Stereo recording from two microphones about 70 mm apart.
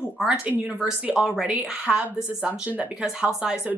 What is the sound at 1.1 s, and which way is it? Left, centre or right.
A woman's voice, centre.